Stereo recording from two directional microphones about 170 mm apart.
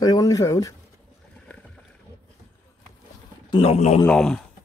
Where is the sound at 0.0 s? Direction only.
20° left (ahead or behind).